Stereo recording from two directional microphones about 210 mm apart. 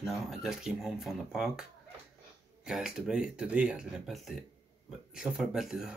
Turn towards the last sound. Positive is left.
turn(degrees=0)  # may be behind; listen again after turning